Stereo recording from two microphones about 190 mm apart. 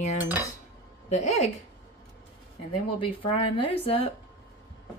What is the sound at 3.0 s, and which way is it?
A woman's voice, 30° left (ahead or behind).